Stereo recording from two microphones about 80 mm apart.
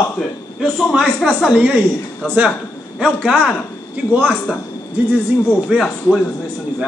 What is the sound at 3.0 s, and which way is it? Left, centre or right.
Speech, centre.